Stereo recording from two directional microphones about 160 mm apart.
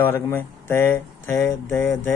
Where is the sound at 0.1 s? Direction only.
15° left (ahead or behind).